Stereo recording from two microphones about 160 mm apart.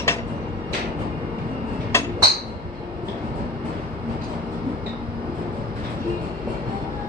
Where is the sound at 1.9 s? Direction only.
15° left (ahead or behind).